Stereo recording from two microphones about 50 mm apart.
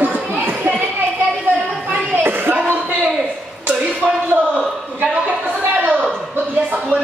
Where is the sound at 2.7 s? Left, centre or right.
Right.